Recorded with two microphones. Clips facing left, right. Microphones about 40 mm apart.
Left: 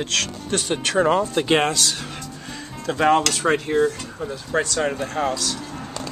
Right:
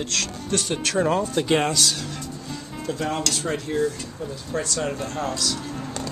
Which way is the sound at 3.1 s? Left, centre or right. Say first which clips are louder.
Left 7 dB; left.